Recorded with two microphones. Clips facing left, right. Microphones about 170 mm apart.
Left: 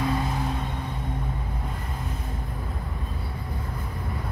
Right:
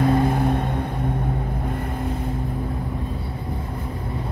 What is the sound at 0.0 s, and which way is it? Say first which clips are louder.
Music: right 8 dB; 55° right (ahead or behind).